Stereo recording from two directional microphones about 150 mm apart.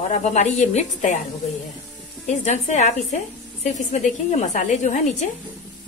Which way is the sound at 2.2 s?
50° left (ahead or behind).